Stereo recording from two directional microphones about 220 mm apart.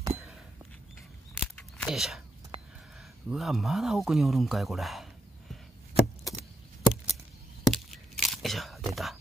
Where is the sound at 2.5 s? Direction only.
20° right (ahead or behind).